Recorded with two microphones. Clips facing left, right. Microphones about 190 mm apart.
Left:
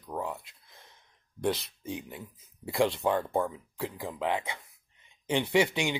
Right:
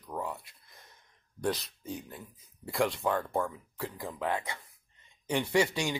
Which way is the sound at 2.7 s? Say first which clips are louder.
Left 3 dB; 20° left (ahead or behind).